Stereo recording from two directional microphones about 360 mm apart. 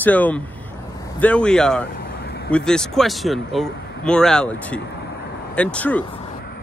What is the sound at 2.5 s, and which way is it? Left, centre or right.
Speech, centre.